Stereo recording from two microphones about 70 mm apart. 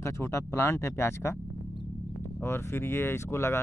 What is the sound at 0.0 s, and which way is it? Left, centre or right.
Speech, left.